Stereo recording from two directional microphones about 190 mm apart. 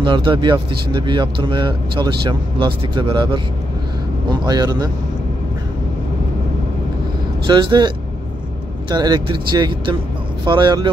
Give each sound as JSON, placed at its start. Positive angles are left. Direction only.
{"t": 0.0, "sound": "speech", "side_deg": -25}
{"t": 7.4, "sound": "speech", "side_deg": -25}